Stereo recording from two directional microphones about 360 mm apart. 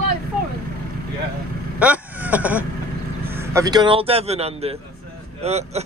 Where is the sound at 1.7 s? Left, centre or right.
Centre.